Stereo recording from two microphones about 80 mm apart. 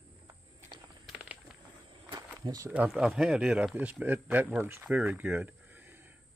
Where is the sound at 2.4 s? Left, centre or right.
Right.